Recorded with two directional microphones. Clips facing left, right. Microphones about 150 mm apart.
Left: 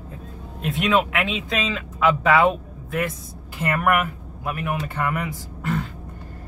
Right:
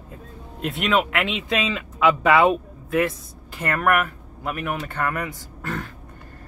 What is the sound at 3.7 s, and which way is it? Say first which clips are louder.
Speech: even; 10° left (ahead or behind).